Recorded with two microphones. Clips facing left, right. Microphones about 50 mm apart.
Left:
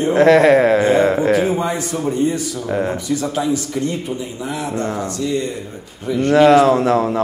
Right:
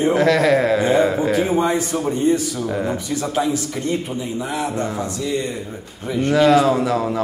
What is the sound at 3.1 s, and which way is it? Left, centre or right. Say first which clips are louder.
A man's voice: left 1 dB; centre.